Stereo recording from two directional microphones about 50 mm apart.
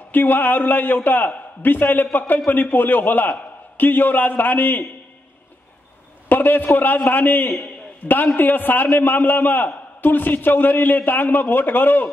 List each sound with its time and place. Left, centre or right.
0.1 s a man's voice: left
6.2 s a man's voice: left